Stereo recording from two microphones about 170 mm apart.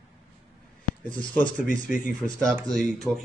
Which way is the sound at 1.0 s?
10° left (ahead or behind).